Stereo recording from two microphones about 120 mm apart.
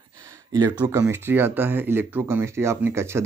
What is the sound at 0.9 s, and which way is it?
Speech, 25° right (ahead or behind).